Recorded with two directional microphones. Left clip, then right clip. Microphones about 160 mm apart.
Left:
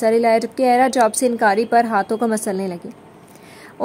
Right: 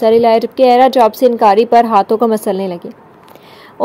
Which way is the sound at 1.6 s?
40° right (ahead or behind).